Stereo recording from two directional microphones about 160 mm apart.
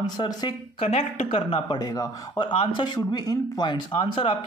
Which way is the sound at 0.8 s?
40° left (ahead or behind).